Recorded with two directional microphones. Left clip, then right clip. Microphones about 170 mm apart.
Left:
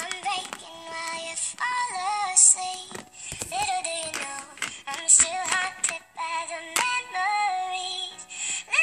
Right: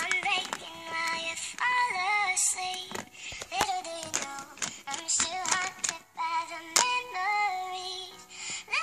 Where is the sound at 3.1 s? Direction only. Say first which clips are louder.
Left 2 dB; 45° left (ahead or behind).